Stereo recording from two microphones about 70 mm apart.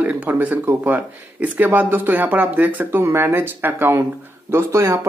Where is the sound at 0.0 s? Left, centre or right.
Right.